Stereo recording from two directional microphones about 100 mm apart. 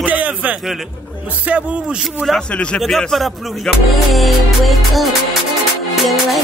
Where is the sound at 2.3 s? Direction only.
10° left (ahead or behind).